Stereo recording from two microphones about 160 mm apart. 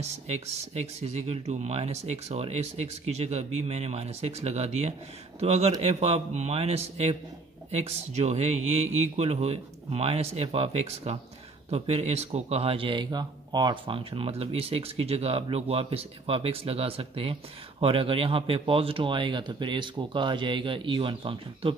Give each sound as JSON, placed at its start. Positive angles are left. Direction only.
{"t": 0.0, "sound": "speech", "side_deg": -45}